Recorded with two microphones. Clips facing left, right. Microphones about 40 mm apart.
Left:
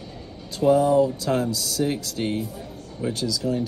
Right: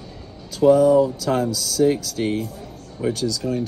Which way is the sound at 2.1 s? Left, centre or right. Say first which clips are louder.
Right 3 dB; right.